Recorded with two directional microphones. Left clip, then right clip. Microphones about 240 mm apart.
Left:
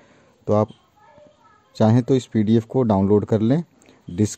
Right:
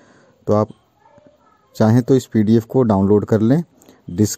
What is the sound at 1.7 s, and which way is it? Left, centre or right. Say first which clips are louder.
Speech: right 3 dB; right.